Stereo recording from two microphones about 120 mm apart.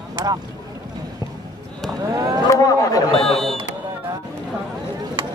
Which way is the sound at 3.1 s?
5° left (ahead or behind).